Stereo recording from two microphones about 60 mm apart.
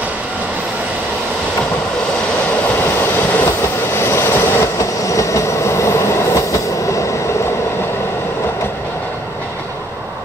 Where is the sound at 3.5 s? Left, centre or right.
Left.